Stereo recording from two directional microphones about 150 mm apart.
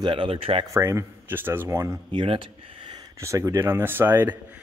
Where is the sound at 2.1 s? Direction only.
35° right (ahead or behind).